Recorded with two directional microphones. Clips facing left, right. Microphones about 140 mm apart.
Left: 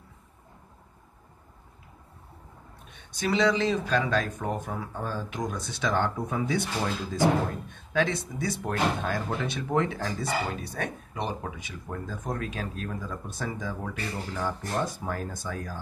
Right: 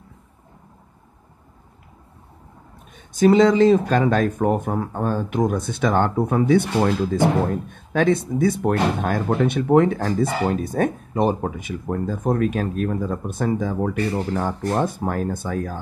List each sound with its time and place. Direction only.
2.9 s speech: 45° right (ahead or behind)